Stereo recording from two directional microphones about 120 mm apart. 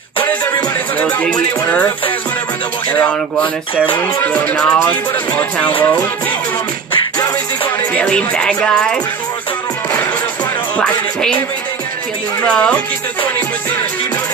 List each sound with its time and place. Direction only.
0.9 s music: 10° left (ahead or behind)
2.9 s music: 15° left (ahead or behind)
7.9 s music: 10° left (ahead or behind)
10.8 s music: 10° left (ahead or behind)
12.4 s music: 10° left (ahead or behind)